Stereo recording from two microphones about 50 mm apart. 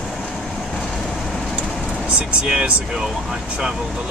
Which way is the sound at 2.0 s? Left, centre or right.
Right.